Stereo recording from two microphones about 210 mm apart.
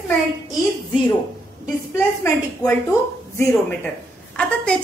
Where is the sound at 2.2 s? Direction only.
15° left (ahead or behind).